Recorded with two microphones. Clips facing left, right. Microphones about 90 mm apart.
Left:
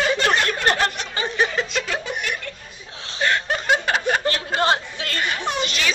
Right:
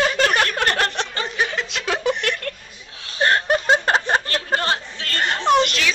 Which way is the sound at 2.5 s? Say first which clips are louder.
Right 5 dB; 55° right (ahead or behind).